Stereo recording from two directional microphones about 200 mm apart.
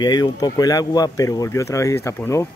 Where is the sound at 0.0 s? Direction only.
20° left (ahead or behind).